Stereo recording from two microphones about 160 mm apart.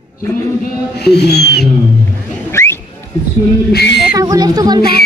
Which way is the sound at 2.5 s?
15° left (ahead or behind).